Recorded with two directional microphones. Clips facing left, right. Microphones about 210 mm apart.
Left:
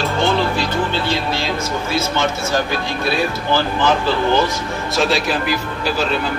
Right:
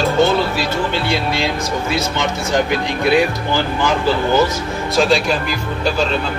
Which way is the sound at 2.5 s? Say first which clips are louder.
Right 3 dB; 20° right (ahead or behind).